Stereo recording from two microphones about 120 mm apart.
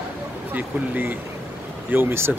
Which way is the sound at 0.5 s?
15° right (ahead or behind).